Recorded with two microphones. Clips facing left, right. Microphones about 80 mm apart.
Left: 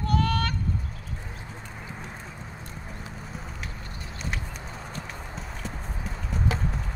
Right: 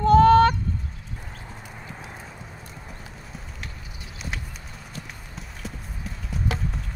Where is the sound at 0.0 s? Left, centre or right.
Right.